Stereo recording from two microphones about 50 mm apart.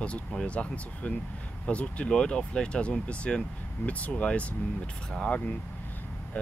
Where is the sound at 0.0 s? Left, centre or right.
Centre.